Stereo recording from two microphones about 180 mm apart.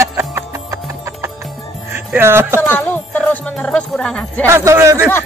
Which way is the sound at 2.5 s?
10° left (ahead or behind).